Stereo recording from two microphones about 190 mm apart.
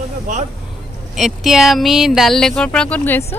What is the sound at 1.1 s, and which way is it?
A woman's voice, centre (ahead or behind).